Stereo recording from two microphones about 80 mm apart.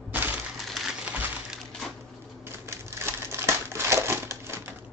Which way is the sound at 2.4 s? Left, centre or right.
Right.